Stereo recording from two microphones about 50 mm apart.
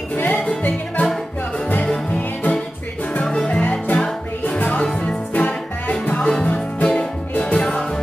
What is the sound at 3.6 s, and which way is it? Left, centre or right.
Music, left.